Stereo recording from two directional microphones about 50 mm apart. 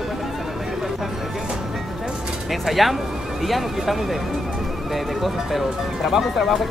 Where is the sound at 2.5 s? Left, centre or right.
Centre.